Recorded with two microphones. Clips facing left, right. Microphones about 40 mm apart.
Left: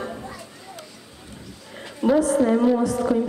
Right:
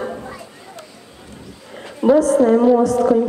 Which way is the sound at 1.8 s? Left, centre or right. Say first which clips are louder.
Right 6 dB; centre.